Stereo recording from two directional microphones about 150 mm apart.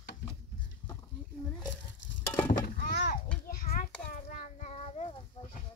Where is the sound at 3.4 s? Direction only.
80° left.